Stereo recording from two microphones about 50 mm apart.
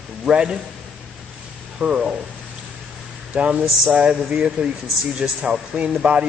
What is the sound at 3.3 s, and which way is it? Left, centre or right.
A man's voice, right.